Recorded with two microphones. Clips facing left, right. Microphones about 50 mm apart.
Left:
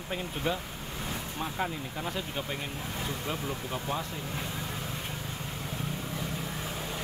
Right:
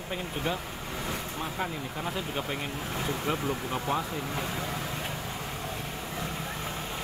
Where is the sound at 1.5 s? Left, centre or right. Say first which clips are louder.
Even; centre.